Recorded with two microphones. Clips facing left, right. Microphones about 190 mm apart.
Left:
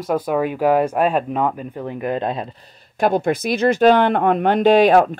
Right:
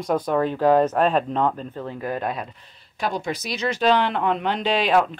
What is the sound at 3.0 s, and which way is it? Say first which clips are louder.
Speech: left 9 dB; 55° left (ahead or behind).